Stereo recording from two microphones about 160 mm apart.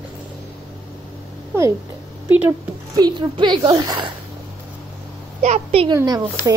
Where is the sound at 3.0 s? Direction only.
25° right (ahead or behind).